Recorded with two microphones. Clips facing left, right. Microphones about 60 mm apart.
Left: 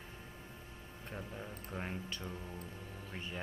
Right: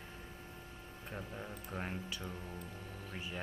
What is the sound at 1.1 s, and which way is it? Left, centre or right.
Speech, centre.